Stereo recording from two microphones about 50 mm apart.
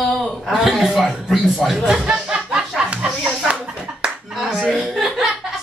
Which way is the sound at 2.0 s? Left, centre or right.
Centre.